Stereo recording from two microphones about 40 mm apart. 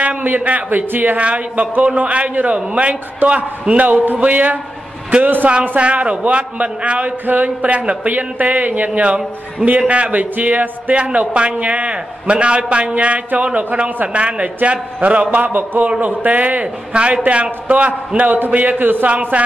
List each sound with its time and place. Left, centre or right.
0.2 s a man's voice: right
1.1 s a man's voice: right
5.8 s a man's voice: right
8.1 s a man's voice: right
10.3 s a man's voice: right
15.3 s a man's voice: right
19.0 s a man's voice: right